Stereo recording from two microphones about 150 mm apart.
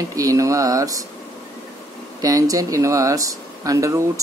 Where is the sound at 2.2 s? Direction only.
25° right (ahead or behind).